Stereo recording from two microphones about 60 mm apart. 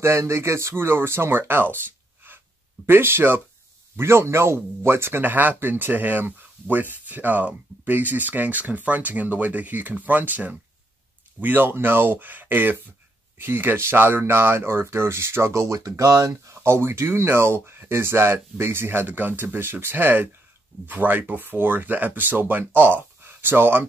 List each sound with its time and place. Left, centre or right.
0.0 s speech: right
2.9 s speech: right
15.5 s speech: right